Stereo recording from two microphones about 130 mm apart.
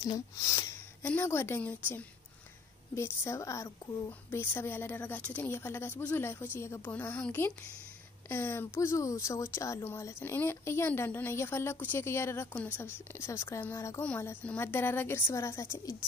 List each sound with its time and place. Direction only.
0.0 s a woman's voice: 25° left (ahead or behind)